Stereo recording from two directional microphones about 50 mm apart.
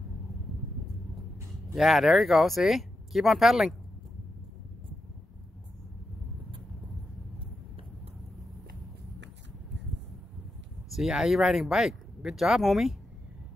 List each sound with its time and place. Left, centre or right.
1.8 s speech: centre
10.9 s speech: centre